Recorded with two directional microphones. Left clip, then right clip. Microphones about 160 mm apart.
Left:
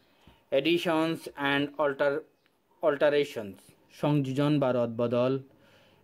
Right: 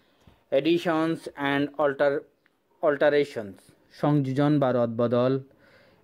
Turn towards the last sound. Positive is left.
turn(degrees=-15)  # may be behind; listen again after turning